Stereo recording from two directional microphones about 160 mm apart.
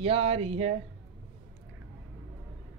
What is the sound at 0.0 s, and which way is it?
Speech, 40° right (ahead or behind).